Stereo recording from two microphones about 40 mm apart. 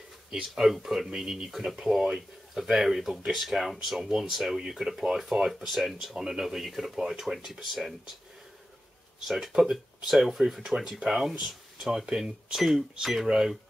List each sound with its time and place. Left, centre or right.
0.3 s speech: centre
9.3 s speech: centre